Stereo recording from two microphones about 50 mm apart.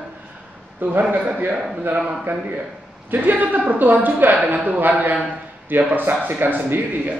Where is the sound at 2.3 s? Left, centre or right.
Right.